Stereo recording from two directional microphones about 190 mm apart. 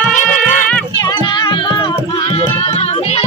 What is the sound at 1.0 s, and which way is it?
Music, 25° left (ahead or behind).